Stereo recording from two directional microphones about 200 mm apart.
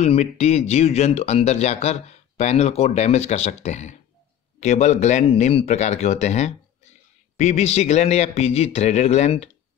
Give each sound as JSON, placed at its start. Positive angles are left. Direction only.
{"t": 0.0, "sound": "speech", "side_deg": 30}